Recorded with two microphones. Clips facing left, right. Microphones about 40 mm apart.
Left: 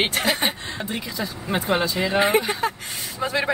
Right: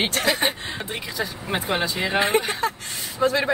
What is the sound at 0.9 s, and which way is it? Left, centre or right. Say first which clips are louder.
Speech: even; centre.